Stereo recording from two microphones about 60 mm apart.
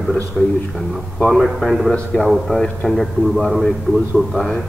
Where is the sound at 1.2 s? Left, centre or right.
Centre.